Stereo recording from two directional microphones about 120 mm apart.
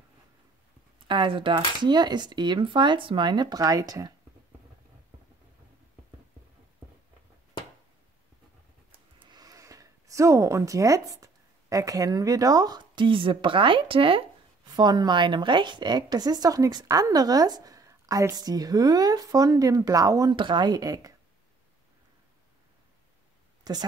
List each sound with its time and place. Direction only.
1.0 s a woman's voice: 40° right (ahead or behind)
9.2 s speech: 35° right (ahead or behind)
14.8 s a woman's voice: 35° right (ahead or behind)
20.3 s a woman's voice: 40° right (ahead or behind)
23.6 s a woman's voice: 35° right (ahead or behind)